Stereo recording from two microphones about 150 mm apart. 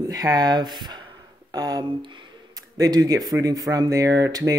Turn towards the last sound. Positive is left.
turn(degrees=-25)  # may be behind; listen again after turning